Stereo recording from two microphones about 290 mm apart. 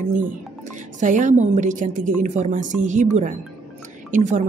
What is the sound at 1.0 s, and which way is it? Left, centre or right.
A woman's voice, right.